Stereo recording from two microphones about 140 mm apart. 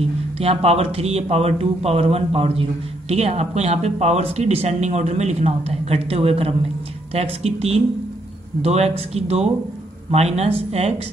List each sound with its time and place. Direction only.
0.0 s speech: 45° right (ahead or behind)